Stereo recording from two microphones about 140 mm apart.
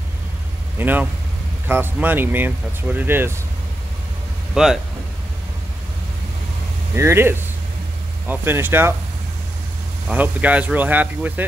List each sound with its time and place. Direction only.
0.7 s speech: 10° right (ahead or behind)
4.6 s speech: 5° right (ahead or behind)
7.0 s speech: 20° right (ahead or behind)
10.0 s speech: 10° right (ahead or behind)